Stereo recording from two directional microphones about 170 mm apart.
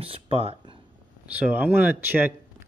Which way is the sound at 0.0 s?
35° right (ahead or behind).